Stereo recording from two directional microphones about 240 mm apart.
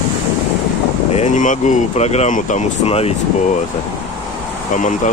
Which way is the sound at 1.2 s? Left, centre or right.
Left.